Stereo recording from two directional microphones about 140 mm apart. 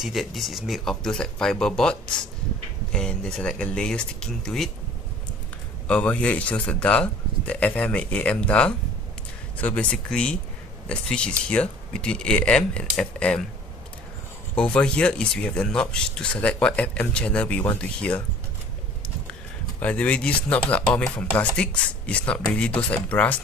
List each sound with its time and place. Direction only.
0.0 s speech: centre (ahead or behind)
5.9 s speech: 10° left (ahead or behind)
14.5 s speech: 10° left (ahead or behind)
19.8 s speech: 10° left (ahead or behind)